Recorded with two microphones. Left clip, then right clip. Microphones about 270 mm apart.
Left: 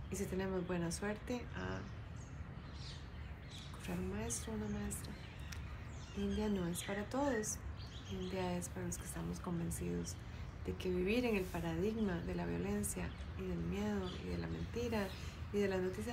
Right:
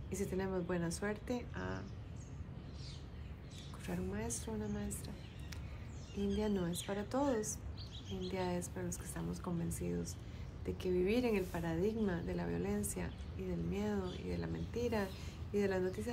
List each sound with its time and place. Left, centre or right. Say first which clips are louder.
0.1 s a woman's voice: right 1 dB; centre
3.8 s a woman's voice: right 2 dB; centre
6.3 s a woman's voice: right 2 dB; centre
6.7 s a woman's voice: right 1 dB; centre
7.1 s a woman's voice: right 2 dB; centre